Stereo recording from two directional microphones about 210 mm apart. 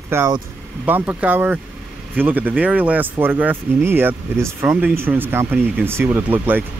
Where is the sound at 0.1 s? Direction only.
10° right (ahead or behind).